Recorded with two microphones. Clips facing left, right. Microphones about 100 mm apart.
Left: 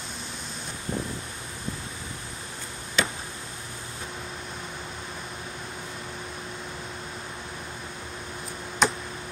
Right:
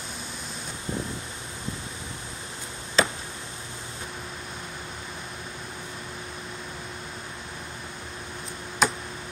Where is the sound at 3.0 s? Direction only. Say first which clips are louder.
Right 4 dB; 35° right (ahead or behind).